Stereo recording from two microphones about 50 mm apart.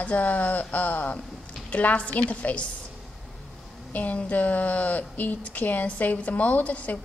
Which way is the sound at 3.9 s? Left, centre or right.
Left.